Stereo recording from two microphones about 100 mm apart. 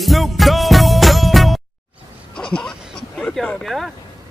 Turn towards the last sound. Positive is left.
turn(degrees=5)  # may be behind; listen again after turning